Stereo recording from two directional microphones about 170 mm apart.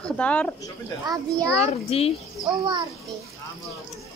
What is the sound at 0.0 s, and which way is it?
Speech, 10° left (ahead or behind).